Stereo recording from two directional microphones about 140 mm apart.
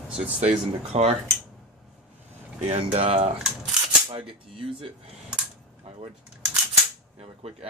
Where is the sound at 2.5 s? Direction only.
50° right (ahead or behind).